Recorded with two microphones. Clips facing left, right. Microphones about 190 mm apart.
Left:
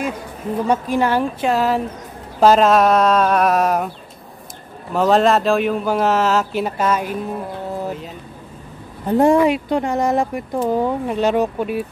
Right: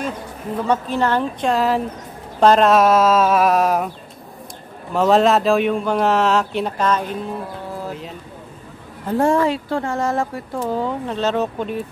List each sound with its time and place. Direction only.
0.7 s speech: 10° left (ahead or behind)
4.9 s speech: centre (ahead or behind)
9.0 s speech: 20° left (ahead or behind)